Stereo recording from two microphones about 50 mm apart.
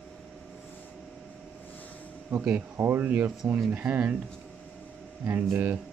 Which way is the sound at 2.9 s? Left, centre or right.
Right.